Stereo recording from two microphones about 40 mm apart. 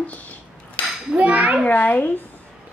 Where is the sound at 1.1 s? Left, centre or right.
Right.